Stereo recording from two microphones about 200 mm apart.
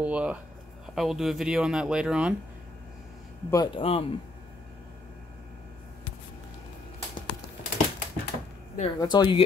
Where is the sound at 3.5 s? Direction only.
20° left (ahead or behind).